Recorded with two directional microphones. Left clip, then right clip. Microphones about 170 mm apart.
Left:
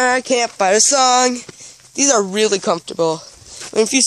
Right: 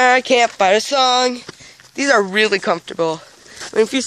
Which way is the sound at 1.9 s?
20° left (ahead or behind).